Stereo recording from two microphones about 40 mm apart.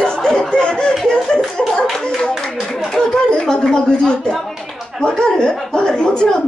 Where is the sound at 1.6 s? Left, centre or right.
Centre.